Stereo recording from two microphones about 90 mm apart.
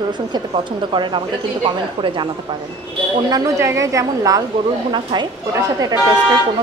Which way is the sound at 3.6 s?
35° right (ahead or behind).